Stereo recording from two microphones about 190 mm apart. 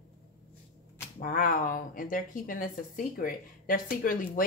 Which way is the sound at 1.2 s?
45° left (ahead or behind).